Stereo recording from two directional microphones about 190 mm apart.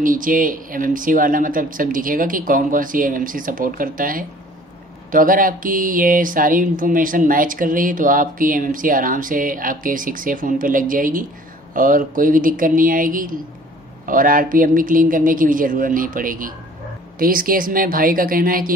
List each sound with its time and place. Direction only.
0.0 s speech: 45° right (ahead or behind)